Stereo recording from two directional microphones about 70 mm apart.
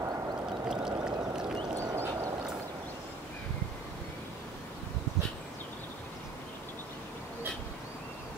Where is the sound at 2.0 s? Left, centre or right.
Right.